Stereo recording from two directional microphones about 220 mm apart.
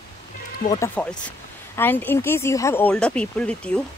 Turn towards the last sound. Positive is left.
turn(degrees=5)  # may be behind; listen again after turning